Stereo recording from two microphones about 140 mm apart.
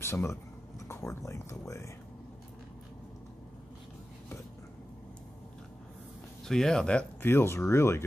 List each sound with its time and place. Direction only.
0.0 s speech: 20° left (ahead or behind)
6.4 s speech: 5° left (ahead or behind)